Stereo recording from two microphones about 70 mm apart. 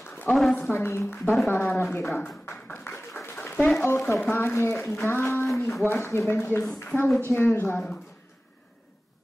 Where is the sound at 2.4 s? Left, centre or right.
Left.